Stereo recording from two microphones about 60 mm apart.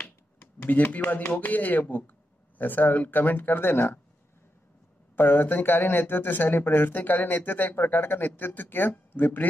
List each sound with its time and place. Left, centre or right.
0.7 s speech: left
5.1 s speech: left